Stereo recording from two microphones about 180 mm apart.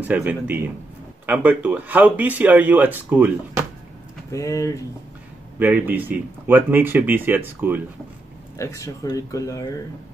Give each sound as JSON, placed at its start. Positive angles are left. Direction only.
{"t": 0.0, "sound": "speech", "side_deg": -10}
{"t": 4.3, "sound": "speech", "side_deg": 15}
{"t": 5.6, "sound": "speech", "side_deg": -10}
{"t": 8.5, "sound": "speech", "side_deg": 15}